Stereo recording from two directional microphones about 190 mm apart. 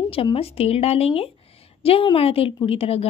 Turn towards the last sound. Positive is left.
turn(degrees=30)  # may be behind; listen again after turning